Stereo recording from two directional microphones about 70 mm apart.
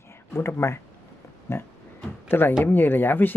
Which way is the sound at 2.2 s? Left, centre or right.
Left.